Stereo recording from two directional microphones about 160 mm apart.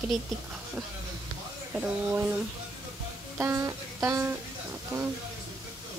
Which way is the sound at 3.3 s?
15° right (ahead or behind).